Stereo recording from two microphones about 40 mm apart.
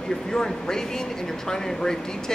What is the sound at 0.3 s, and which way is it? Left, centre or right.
Speech, centre.